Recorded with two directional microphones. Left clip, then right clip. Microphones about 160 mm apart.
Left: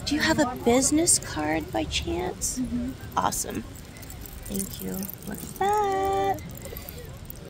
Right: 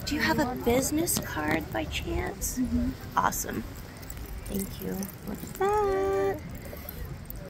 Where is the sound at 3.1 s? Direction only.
30° left (ahead or behind).